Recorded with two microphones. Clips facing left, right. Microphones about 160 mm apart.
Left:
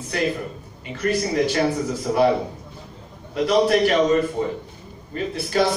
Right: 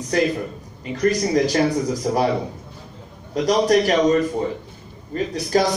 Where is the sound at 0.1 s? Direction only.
40° right (ahead or behind).